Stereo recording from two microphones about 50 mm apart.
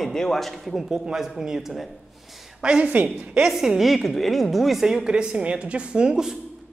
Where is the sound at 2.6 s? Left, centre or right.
Centre.